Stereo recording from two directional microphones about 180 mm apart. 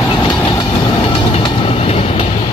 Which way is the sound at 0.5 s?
25° left (ahead or behind).